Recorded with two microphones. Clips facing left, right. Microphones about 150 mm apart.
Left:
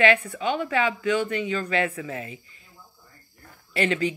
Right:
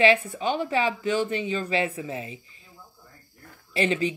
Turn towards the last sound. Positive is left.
turn(degrees=-25)  # may be behind; listen again after turning